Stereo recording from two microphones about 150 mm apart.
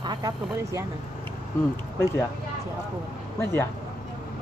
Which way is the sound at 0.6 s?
20° right (ahead or behind).